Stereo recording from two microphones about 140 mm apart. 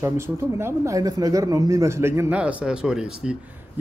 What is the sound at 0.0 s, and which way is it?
Speech, 20° right (ahead or behind).